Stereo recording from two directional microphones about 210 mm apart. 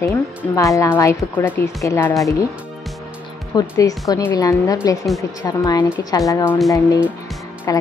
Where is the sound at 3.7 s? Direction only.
15° left (ahead or behind).